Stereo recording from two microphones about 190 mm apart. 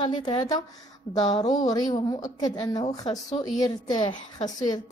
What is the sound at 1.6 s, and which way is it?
Speech, 20° left (ahead or behind).